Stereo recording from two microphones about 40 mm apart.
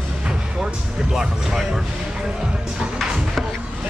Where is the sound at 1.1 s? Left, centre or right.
Centre.